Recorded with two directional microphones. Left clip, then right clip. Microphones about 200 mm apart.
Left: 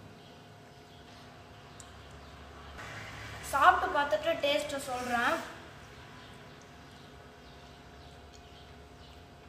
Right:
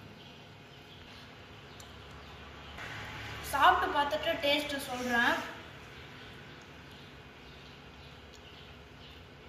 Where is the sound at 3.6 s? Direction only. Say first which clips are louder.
Left 1 dB; 15° left (ahead or behind).